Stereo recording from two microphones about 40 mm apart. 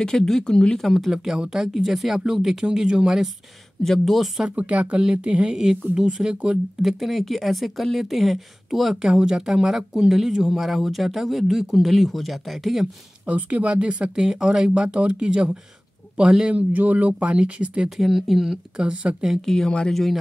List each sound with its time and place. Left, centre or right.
0.0 s speech: centre
1.1 s speech: centre
3.8 s speech: centre
4.5 s speech: right
6.8 s speech: centre
13.2 s speech: right
16.5 s speech: right
17.9 s speech: centre
18.8 s speech: right
19.4 s speech: centre